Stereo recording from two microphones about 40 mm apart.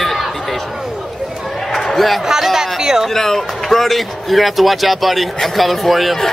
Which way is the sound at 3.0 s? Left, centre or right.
Centre.